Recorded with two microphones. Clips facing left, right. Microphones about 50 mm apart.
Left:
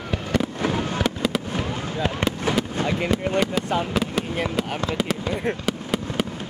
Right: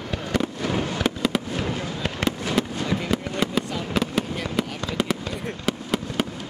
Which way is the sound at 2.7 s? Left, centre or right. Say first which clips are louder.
Left 3 dB; left.